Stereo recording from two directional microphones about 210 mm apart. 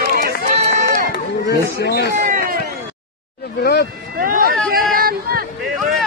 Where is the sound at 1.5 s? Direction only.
50° left (ahead or behind).